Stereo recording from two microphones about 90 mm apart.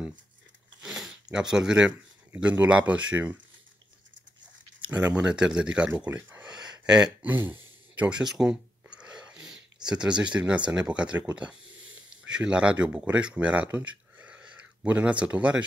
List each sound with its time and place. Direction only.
0.8 s a sound: 5° right (ahead or behind)
1.5 s speech: 5° right (ahead or behind)
1.9 s a sound: 15° right (ahead or behind)
2.9 s speech: 15° right (ahead or behind)
4.8 s speech: 15° right (ahead or behind)
6.1 s speech: 25° right (ahead or behind)
6.9 s a sound: 10° right (ahead or behind)
10.7 s speech: 10° right (ahead or behind)
12.3 s speech: 10° right (ahead or behind)